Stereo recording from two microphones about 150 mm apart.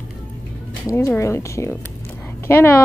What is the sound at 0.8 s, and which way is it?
A woman's voice, 20° left (ahead or behind).